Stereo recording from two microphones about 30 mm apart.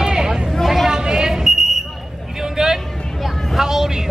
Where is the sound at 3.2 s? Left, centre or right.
Centre.